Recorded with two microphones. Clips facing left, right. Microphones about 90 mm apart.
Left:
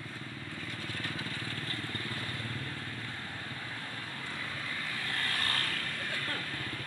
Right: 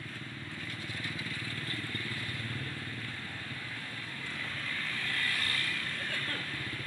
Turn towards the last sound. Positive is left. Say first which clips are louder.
# left 1 dB
turn(degrees=45)  # may be behind; listen again after turning